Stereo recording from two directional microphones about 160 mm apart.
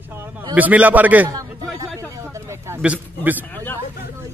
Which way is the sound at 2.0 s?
20° right (ahead or behind).